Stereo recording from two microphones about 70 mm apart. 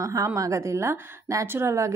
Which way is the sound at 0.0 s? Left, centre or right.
Right.